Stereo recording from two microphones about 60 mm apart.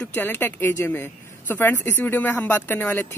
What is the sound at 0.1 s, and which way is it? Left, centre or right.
Speech, left.